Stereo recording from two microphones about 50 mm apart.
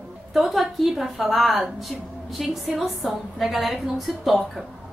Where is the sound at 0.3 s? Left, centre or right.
Centre.